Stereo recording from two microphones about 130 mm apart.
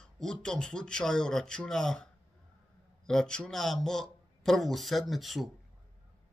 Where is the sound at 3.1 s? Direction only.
5° left (ahead or behind).